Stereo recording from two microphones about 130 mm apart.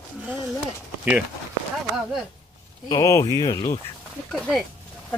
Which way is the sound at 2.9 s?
25° left (ahead or behind).